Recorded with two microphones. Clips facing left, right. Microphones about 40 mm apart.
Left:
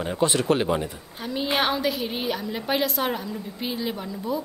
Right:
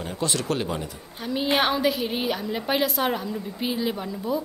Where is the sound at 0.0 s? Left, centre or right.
Left.